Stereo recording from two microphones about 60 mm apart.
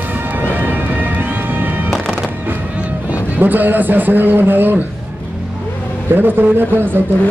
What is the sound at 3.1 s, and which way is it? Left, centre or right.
A man's voice, right.